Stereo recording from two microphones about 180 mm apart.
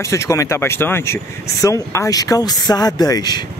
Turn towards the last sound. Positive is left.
turn(degrees=20)  # may be behind; listen again after turning